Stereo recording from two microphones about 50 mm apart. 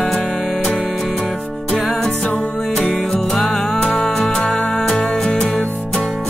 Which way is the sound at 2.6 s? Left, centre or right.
Centre.